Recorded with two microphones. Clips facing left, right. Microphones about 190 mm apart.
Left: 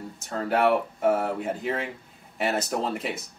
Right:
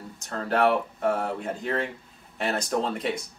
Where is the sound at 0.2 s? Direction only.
5° left (ahead or behind).